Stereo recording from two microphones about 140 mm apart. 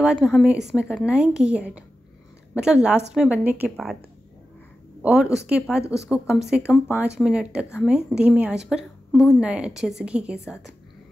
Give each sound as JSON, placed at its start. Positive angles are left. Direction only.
{"t": 0.0, "sound": "a woman's voice", "side_deg": 0}
{"t": 5.0, "sound": "a woman's voice", "side_deg": -5}
{"t": 6.6, "sound": "speech", "side_deg": 15}
{"t": 7.2, "sound": "a woman's voice", "side_deg": -5}